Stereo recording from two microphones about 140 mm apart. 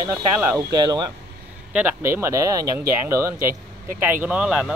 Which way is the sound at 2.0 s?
20° right (ahead or behind).